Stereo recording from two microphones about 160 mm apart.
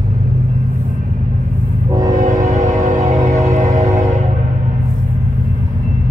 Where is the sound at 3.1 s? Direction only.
20° right (ahead or behind).